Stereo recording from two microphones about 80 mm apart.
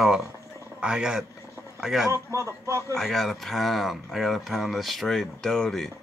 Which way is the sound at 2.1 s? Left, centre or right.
Right.